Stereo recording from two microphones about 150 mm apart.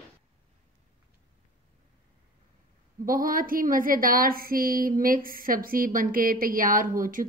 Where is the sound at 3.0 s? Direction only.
70° right (ahead or behind).